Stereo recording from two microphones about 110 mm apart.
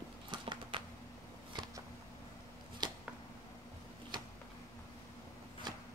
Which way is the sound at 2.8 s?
40° right (ahead or behind).